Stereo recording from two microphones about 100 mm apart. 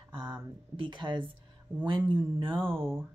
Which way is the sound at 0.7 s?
50° right (ahead or behind).